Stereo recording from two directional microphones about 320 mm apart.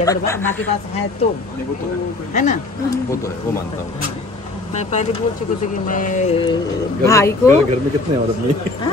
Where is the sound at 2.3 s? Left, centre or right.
Left.